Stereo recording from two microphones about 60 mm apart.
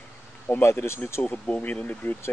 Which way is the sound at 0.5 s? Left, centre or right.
Left.